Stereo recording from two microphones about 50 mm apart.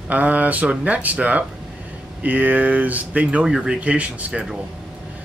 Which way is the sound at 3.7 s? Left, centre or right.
Right.